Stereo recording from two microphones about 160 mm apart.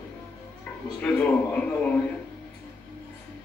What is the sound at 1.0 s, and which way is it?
Speech, 10° left (ahead or behind).